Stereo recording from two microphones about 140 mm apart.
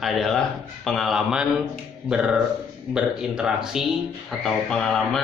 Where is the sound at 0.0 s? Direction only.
Centre (ahead or behind).